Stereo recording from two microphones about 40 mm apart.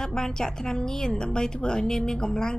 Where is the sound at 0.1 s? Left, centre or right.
Centre.